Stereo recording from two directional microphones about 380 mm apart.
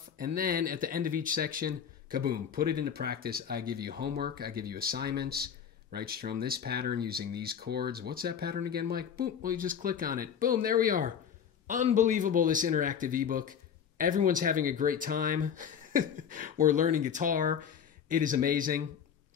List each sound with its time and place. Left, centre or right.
0.2 s speech: right